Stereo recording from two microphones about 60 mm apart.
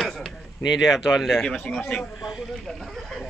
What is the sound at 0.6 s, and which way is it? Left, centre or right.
Speech, centre.